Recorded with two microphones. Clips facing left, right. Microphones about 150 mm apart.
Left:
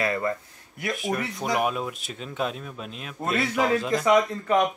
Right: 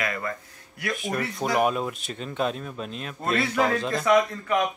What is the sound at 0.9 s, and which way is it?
A man's voice, centre (ahead or behind).